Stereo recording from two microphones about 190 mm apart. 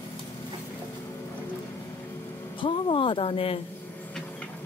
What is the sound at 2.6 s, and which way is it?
Speech, 30° left (ahead or behind).